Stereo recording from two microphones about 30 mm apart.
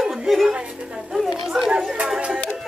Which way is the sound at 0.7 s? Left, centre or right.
Right.